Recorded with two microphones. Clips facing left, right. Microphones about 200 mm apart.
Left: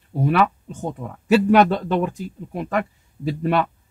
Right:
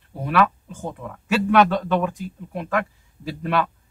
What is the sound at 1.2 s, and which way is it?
Speech, 40° left (ahead or behind).